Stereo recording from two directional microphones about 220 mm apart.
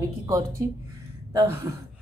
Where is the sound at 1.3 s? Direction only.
15° right (ahead or behind).